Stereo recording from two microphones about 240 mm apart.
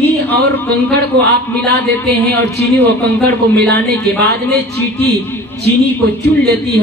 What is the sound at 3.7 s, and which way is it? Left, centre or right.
A woman's voice, right.